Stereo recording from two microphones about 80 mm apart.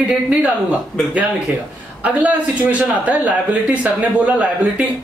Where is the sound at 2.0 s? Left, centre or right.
Centre.